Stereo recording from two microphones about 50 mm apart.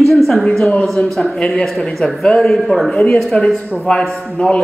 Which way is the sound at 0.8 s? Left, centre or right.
Centre.